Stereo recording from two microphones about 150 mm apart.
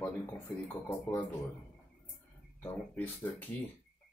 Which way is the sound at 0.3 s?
15° left (ahead or behind).